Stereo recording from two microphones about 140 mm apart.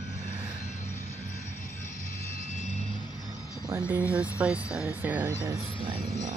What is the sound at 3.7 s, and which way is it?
Speech, 20° right (ahead or behind).